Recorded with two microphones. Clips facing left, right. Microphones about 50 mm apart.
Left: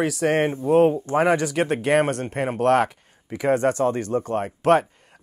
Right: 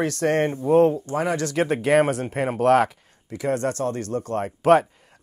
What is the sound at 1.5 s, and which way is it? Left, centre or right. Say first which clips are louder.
Speech: right 1 dB; centre.